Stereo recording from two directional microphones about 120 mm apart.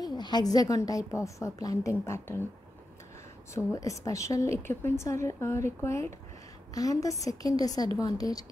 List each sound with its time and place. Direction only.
0.0 s a woman's voice: 35° left (ahead or behind); by 2.4 s 20° left (ahead or behind)
3.5 s a woman's voice: 25° left (ahead or behind)